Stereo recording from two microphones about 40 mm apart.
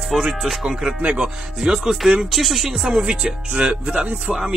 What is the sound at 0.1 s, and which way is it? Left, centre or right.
Speech, centre.